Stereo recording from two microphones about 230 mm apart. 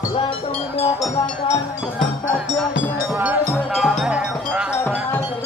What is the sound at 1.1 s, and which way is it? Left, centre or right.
Music, left.